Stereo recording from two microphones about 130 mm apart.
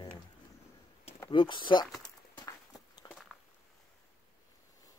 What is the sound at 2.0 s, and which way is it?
Walk, 30° left (ahead or behind).